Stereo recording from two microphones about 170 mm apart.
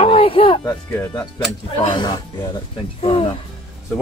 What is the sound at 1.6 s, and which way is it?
Speech, 30° left (ahead or behind).